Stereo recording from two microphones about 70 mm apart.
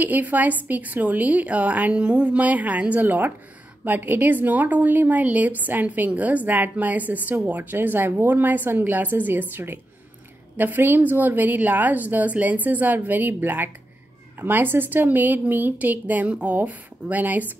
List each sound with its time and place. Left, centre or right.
0.0 s speech: right